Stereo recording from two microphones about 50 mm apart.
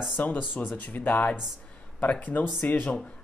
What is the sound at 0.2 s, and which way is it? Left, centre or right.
Speech, left.